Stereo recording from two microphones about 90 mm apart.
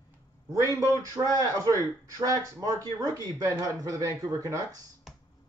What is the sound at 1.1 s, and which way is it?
Speech, 40° right (ahead or behind).